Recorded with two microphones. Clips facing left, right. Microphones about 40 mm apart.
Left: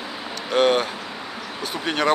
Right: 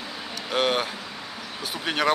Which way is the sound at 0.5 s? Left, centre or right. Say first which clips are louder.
Left 5 dB; centre.